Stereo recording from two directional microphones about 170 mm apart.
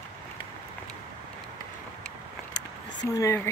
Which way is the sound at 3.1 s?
20° left (ahead or behind).